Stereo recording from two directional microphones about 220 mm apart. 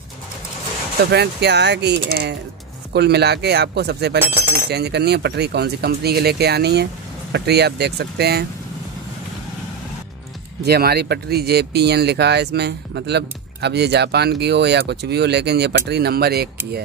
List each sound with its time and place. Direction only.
1.1 s speech: 50° right (ahead or behind)
4.3 s glass: 10° right (ahead or behind)
4.6 s speech: 50° right (ahead or behind)
10.6 s speech: 45° right (ahead or behind)